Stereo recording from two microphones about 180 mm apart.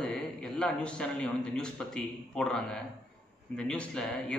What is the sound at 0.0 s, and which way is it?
A man's voice, 5° left (ahead or behind).